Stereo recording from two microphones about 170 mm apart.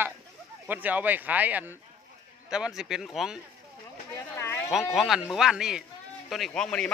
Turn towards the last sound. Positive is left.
turn(degrees=5)  # may be behind; listen again after turning